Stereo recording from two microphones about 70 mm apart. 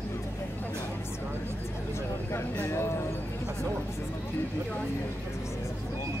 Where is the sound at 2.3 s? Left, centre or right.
Left.